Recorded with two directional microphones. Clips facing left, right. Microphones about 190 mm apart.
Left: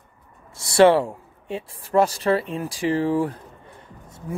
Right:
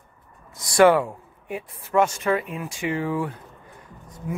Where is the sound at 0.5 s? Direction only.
25° left (ahead or behind).